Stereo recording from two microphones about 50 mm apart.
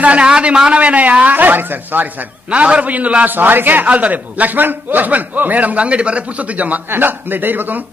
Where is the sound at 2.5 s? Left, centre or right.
Right.